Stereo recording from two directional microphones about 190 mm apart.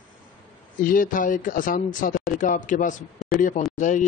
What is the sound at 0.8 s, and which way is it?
Speech, 45° left (ahead or behind).